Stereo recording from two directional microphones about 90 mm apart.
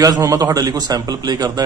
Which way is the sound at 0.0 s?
40° right (ahead or behind).